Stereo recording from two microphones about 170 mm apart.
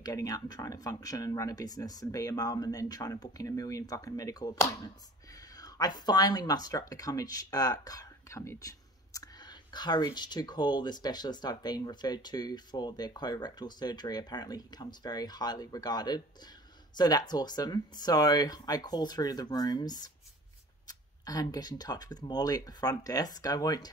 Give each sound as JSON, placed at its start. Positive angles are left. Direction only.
{"t": 0.0, "sound": "speech", "side_deg": 20}